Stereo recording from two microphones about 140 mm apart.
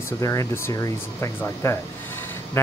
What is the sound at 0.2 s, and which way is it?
Speech, 20° left (ahead or behind).